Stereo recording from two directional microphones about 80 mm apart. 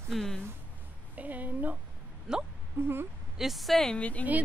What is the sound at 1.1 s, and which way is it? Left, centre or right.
Speech, centre.